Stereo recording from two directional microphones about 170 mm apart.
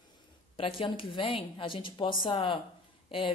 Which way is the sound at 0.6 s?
30° left (ahead or behind).